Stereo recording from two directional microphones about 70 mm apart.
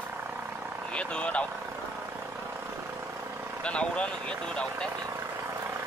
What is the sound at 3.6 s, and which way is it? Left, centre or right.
Speech, centre.